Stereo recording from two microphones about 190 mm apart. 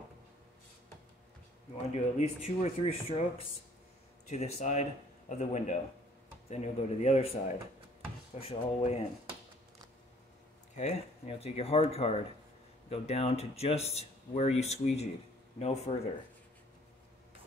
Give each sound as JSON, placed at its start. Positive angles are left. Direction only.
{"t": 2.0, "sound": "speech", "side_deg": 35}
{"t": 8.4, "sound": "speech", "side_deg": 35}
{"t": 10.7, "sound": "speech", "side_deg": 35}